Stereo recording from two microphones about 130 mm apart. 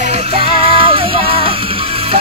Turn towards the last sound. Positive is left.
turn(degrees=-45)  # may be behind; listen again after turning